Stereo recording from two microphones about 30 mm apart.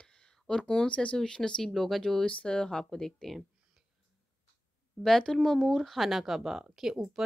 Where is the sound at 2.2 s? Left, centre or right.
Left.